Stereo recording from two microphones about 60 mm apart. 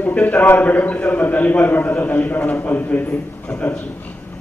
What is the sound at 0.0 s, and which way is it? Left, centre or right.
A man's voice, left.